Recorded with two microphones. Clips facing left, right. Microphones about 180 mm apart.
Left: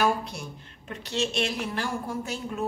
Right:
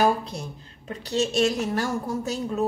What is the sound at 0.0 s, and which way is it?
Speech, 35° right (ahead or behind).